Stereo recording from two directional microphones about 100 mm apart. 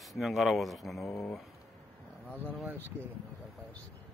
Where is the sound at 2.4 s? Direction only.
15° right (ahead or behind).